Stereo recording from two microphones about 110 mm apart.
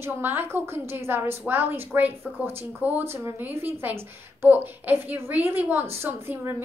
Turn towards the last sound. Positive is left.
turn(degrees=-20)  # may be behind; listen again after turning